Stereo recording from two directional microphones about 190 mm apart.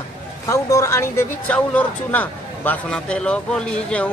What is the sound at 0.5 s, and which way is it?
Speech, 15° left (ahead or behind).